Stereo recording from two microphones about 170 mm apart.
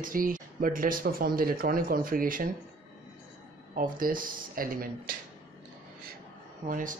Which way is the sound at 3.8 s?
55° right (ahead or behind).